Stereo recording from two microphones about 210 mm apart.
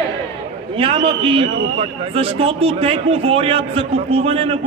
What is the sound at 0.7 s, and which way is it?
A man's voice, 25° right (ahead or behind).